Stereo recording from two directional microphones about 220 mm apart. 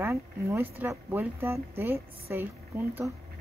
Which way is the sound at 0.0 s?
10° right (ahead or behind).